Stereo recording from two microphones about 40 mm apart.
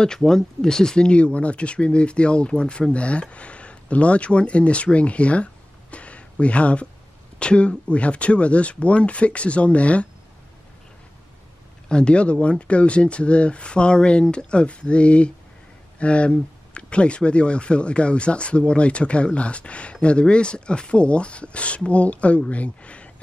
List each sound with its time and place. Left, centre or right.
0.0 s speech: centre; by 10.0 s left
11.9 s speech: left